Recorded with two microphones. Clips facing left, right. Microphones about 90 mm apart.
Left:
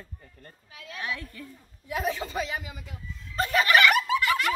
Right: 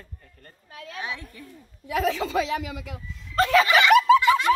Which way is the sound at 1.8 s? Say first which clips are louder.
Right 5 dB; 90° right.